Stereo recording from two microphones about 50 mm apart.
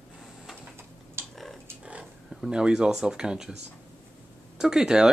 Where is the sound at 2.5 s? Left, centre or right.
Centre.